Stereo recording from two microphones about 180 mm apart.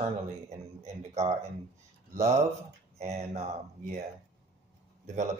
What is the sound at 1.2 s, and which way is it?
Speech, 40° right (ahead or behind).